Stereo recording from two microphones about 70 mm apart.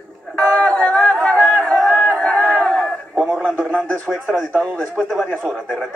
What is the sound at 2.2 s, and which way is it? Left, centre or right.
Crowd, centre.